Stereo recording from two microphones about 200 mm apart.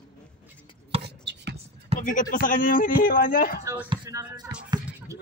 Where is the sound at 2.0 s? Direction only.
40° left (ahead or behind).